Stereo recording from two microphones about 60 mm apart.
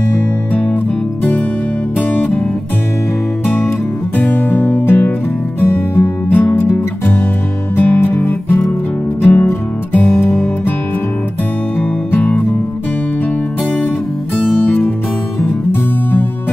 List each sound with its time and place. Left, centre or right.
2.0 s music: left
4.2 s music: left
8.1 s music: left
15.7 s music: left